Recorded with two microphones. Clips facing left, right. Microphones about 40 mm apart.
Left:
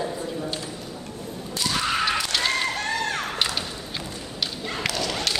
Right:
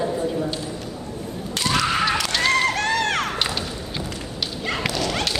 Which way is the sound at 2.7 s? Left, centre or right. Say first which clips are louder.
Right 5 dB; right.